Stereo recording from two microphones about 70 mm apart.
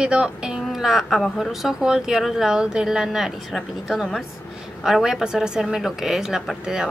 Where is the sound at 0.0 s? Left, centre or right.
Centre.